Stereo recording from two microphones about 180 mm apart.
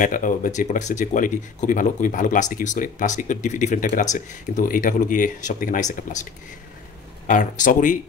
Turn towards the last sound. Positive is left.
turn(degrees=45)  # may be behind; listen again after turning